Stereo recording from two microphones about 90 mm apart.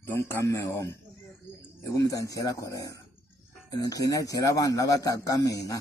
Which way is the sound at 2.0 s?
40° left (ahead or behind).